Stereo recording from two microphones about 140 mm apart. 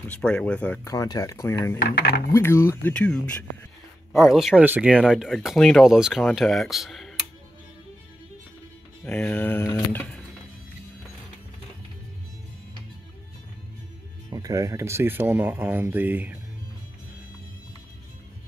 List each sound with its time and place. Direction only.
0.1 s speech: 5° left (ahead or behind)
0.8 s speech: 25° left (ahead or behind); by 3.2 s 10° left (ahead or behind)
4.1 s speech: centre (ahead or behind)
9.0 s speech: 10° left (ahead or behind)
14.3 s speech: 25° right (ahead or behind)